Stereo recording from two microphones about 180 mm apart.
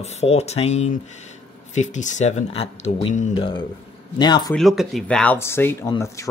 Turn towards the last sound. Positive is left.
turn(degrees=15)  # may be behind; listen again after turning